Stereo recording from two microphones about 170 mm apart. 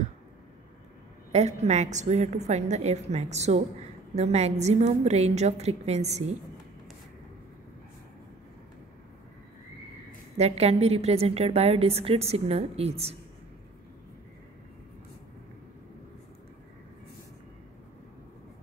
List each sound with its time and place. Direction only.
1.3 s a woman's voice: 40° right (ahead or behind)
10.3 s a woman's voice: 40° right (ahead or behind)